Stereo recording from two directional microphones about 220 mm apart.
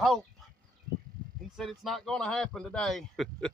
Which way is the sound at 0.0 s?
Centre (ahead or behind).